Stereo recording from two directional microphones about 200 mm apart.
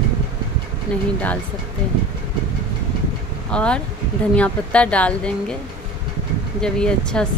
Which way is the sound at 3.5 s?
5° left (ahead or behind).